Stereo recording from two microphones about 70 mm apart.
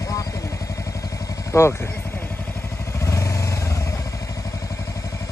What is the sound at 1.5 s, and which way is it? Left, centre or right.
Speech, left.